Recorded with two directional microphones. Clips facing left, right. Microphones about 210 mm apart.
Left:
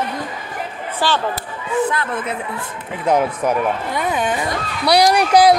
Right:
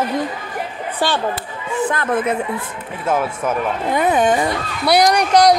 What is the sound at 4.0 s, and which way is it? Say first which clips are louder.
Speech: right 8 dB; 50° right (ahead or behind).